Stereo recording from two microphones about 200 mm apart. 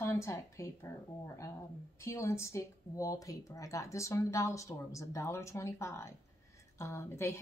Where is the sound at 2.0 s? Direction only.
15° left (ahead or behind).